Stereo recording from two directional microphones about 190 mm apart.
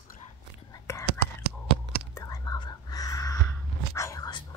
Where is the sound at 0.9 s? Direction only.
15° left (ahead or behind).